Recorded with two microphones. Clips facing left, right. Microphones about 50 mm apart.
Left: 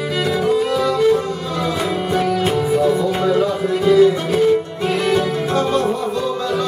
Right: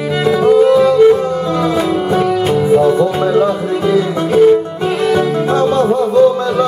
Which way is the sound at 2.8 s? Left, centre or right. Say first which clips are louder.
Right 5 dB; right.